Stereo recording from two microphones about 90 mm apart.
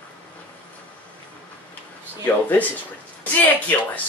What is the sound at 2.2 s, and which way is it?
Speech, 20° left (ahead or behind).